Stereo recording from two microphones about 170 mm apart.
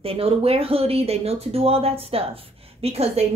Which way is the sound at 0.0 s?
35° right (ahead or behind).